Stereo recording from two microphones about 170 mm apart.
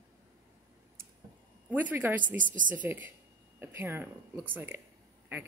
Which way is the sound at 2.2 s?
50° right (ahead or behind).